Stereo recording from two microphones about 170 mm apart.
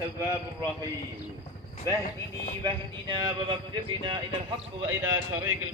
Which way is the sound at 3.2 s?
30° right (ahead or behind).